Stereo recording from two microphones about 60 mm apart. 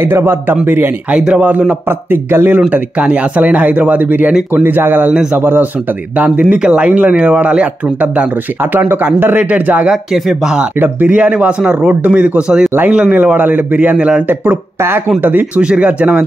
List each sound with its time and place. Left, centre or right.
0.0 s speech: right
1.2 s speech: centre
1.9 s speech: right
2.7 s speech: right
9.8 s speech: centre
11.1 s speech: right
15.2 s speech: right
15.6 s speech: centre